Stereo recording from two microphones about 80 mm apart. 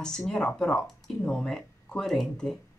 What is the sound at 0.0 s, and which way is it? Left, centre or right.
Speech, centre.